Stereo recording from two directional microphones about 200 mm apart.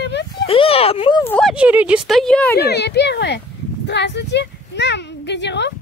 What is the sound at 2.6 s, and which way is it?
A child's voice, 55° left (ahead or behind).